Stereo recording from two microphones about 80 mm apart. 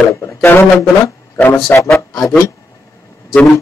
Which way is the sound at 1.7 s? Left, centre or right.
Left.